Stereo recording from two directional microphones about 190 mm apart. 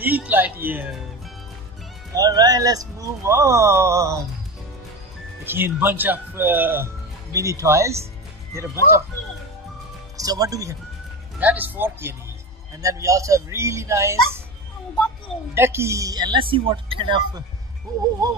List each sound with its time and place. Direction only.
0.0 s speech: 10° right (ahead or behind)
2.1 s speech: 20° right (ahead or behind)
5.4 s speech: 10° right (ahead or behind)
10.1 s speech: 20° right (ahead or behind)
15.5 s speech: 15° right (ahead or behind)